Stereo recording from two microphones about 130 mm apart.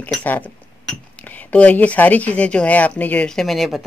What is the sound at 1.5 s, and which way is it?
Speech, 10° left (ahead or behind).